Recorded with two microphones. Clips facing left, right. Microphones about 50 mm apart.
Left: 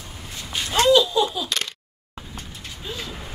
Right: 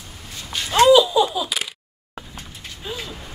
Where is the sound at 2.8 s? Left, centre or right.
Centre.